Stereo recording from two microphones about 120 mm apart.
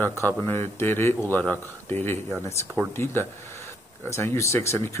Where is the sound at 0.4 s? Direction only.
20° left (ahead or behind).